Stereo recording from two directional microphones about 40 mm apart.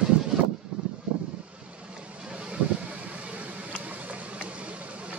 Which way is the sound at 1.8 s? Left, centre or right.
Right.